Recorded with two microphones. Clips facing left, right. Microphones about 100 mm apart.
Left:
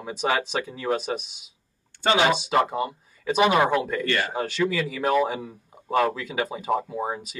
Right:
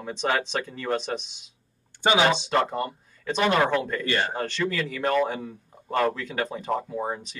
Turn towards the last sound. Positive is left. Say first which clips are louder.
# left 1 dB
turn(degrees=5)  # may be behind; listen again after turning